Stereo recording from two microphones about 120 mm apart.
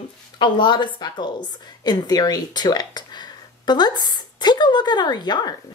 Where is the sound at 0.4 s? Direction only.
40° left (ahead or behind).